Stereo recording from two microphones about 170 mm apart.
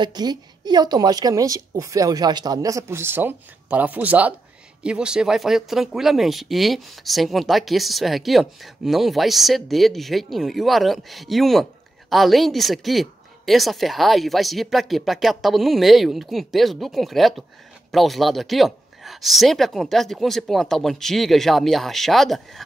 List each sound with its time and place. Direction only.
0.0 s a woman's voice: 25° right (ahead or behind); by 22.6 s centre (ahead or behind)